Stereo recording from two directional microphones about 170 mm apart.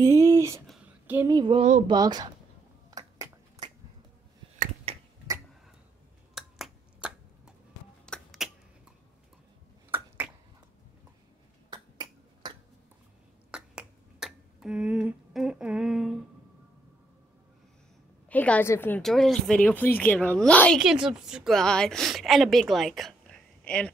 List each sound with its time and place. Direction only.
0.0 s a sound: 20° right (ahead or behind)
1.3 s speech: 30° right (ahead or behind)
1.6 s speech: 45° right (ahead or behind)
1.9 s speech: 25° right (ahead or behind)
2.9 s a sound: 20° right (ahead or behind)
4.9 s finger snapping: 35° right (ahead or behind)
6.3 s finger snapping: 5° right (ahead or behind)
9.8 s finger snapping: 10° right (ahead or behind)
11.7 s finger snapping: 25° right (ahead or behind)
13.5 s finger snapping: 5° right (ahead or behind)
18.3 s a woman's voice: 10° left (ahead or behind)
20.8 s a woman's voice: 5° right (ahead or behind)